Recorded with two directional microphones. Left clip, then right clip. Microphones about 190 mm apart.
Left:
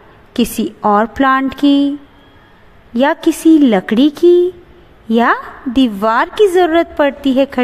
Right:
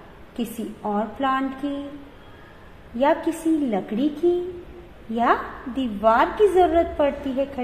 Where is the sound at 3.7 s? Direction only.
45° left (ahead or behind).